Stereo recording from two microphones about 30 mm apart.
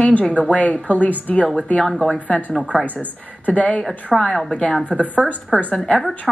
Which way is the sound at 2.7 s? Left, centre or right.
Centre.